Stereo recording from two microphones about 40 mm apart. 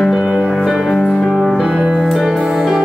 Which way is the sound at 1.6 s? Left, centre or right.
Right.